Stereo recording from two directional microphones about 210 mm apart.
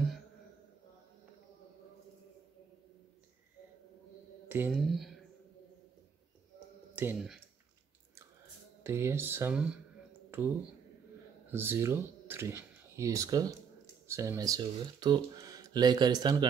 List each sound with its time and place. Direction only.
4.5 s speech: 10° right (ahead or behind)
7.0 s speech: 5° right (ahead or behind)
8.8 s speech: 10° right (ahead or behind)
11.5 s speech: 10° right (ahead or behind)